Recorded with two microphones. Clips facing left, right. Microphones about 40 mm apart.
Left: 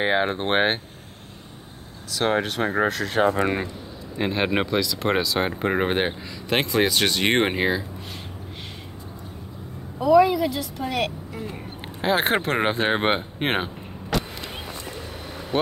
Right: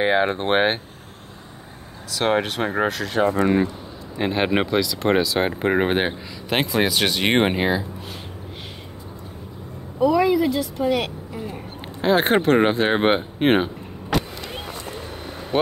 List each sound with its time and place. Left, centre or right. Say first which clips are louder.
0.0 s a woman's voice: right 3 dB; centre
2.4 s speech: even; centre
2.9 s a woman's voice: even; centre
4.2 s a woman's voice: right 2 dB; centre
9.9 s a woman's voice: left 1 dB; centre
14.1 s vehicle: right 3 dB; right
15.5 s speech: right 3 dB; centre